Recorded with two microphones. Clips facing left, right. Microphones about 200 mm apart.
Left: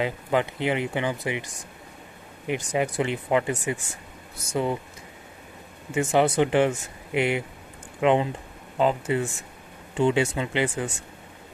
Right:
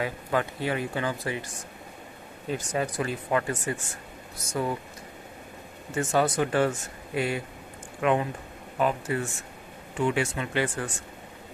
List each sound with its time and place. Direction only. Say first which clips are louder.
0.0 s speech: left 3 dB; 20° left (ahead or behind)
2.4 s speech: left 3 dB; 20° left (ahead or behind)
5.9 s speech: left 4 dB; 25° left (ahead or behind)